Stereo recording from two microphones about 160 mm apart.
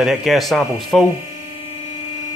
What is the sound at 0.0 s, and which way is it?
Speech, centre (ahead or behind).